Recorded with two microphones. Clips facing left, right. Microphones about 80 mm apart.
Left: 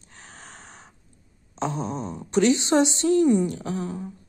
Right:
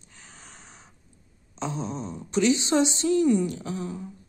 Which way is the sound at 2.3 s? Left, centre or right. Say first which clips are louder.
Left 3 dB; left.